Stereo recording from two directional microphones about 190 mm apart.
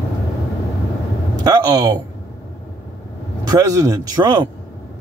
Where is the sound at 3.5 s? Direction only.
15° right (ahead or behind).